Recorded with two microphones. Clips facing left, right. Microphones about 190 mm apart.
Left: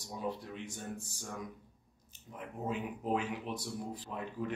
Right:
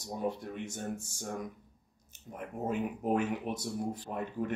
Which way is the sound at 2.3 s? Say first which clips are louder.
Right 4 dB; 50° right (ahead or behind).